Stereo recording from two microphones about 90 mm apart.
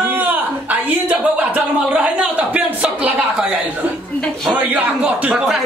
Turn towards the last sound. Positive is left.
turn(degrees=-5)  # may be behind; listen again after turning